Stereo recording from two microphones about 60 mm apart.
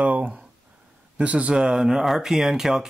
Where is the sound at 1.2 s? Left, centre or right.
Right.